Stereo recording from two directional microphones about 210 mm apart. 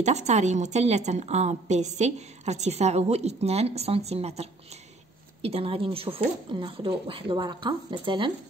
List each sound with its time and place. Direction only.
0.0 s a woman's voice: 35° right (ahead or behind)